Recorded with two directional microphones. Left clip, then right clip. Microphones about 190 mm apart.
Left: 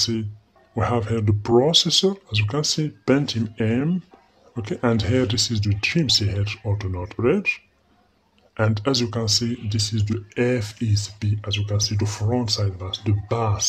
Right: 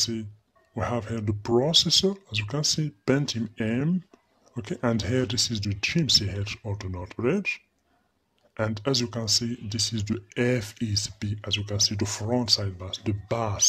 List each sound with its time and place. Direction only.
0.0 s speech: 10° right (ahead or behind)